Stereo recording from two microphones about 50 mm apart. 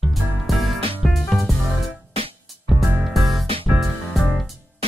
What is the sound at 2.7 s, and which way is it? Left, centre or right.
Music, centre.